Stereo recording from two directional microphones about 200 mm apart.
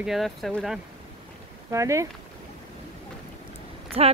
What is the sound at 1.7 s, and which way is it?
Speech, 15° right (ahead or behind).